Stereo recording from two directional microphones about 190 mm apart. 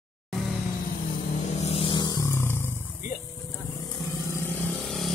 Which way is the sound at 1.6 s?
30° left (ahead or behind).